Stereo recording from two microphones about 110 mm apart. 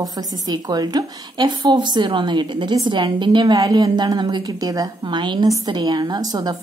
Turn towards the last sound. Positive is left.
turn(degrees=-35)  # may be behind; listen again after turning